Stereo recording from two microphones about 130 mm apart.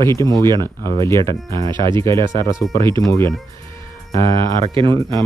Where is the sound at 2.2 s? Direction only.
40° right (ahead or behind).